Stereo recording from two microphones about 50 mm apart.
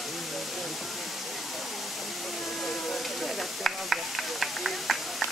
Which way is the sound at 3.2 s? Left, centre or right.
Centre.